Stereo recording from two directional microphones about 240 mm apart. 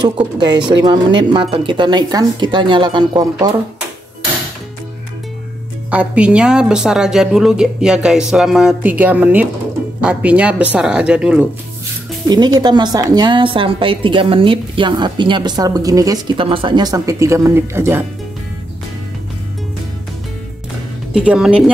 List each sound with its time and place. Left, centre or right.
0.0 s speech: centre
5.9 s speech: centre
12.3 s a woman's voice: centre
21.1 s speech: centre